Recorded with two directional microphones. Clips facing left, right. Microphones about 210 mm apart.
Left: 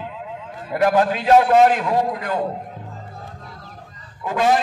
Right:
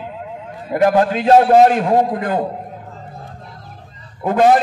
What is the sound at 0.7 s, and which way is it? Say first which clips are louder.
A man's voice: right 3 dB; 30° right (ahead or behind).